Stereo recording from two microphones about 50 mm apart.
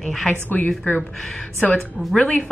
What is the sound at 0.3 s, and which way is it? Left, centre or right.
Speech, left.